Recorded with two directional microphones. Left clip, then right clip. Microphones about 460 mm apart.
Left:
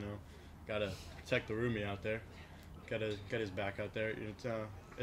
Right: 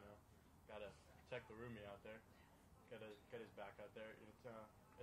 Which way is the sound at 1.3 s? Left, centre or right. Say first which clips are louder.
Left 18 dB; left.